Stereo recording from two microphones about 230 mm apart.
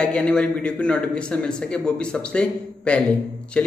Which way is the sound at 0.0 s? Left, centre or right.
Centre.